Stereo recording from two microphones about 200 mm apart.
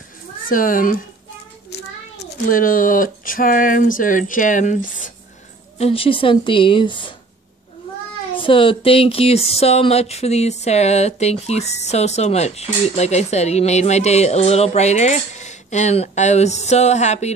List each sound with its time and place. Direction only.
0.5 s a child's voice: 45° left (ahead or behind)
5.8 s a woman's voice: 30° left (ahead or behind)
8.4 s speech: 25° left (ahead or behind)